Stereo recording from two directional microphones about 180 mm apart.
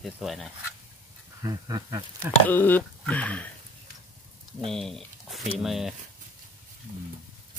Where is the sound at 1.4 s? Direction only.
20° right (ahead or behind).